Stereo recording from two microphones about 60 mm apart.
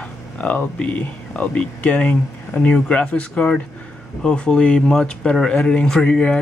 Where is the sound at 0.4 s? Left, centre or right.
Left.